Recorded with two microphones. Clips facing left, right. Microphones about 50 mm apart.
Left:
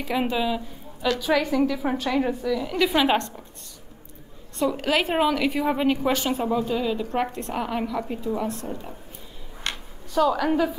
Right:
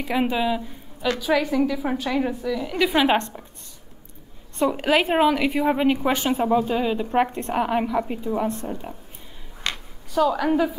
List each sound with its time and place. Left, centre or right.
0.1 s a woman's voice: centre
3.2 s a woman's voice: right
4.6 s a woman's voice: centre
10.1 s a woman's voice: centre